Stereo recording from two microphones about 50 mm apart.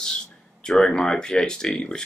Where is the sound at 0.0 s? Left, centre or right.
Centre.